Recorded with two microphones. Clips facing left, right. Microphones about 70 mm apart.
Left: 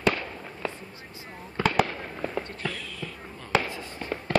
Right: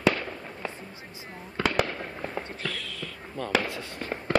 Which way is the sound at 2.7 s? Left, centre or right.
Right.